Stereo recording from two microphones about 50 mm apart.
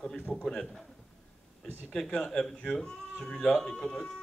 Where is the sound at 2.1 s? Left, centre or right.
Centre.